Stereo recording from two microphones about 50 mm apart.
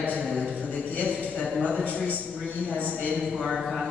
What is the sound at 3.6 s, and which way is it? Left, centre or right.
Speech, centre.